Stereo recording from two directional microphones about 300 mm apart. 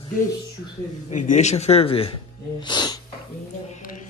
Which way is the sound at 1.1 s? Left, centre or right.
Left.